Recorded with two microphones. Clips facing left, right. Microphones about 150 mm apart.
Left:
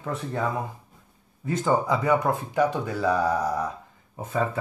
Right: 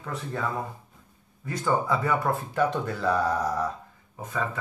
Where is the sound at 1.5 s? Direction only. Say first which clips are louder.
Left 3 dB; 20° left (ahead or behind).